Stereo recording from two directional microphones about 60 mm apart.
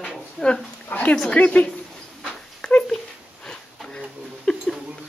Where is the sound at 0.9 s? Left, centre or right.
Left.